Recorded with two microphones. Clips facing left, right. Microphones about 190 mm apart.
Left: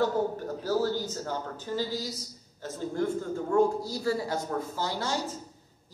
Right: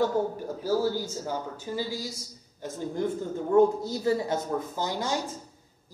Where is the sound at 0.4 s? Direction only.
10° right (ahead or behind).